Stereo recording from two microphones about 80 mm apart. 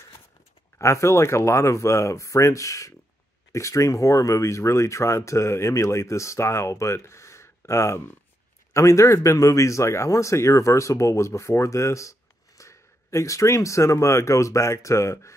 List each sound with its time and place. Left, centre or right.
0.7 s a man's voice: left